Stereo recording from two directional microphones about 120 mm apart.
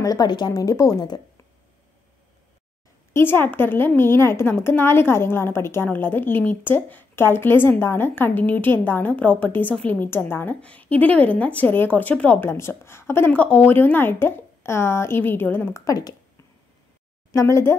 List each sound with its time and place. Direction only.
0.0 s speech: 30° left (ahead or behind)
3.1 s a woman's voice: 20° left (ahead or behind)
17.3 s speech: 25° left (ahead or behind)